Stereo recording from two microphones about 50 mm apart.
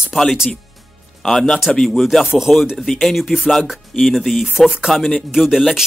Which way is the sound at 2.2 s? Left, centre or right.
Centre.